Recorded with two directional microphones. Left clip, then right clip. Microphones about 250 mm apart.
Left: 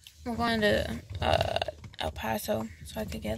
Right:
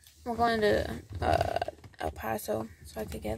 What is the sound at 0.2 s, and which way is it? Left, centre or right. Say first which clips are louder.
Speech: right 1 dB; centre.